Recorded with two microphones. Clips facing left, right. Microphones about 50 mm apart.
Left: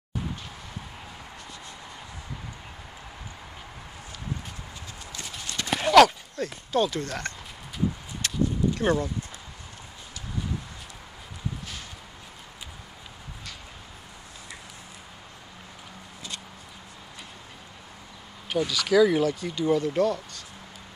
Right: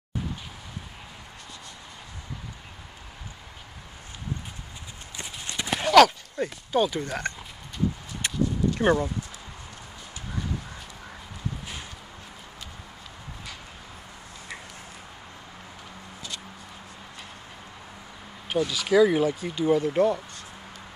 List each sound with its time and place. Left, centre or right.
5.1 s clip-clop: right
5.7 s a sound: centre
6.3 s speech: centre
8.2 s a sound: right
8.7 s speech: right
18.7 s speech: centre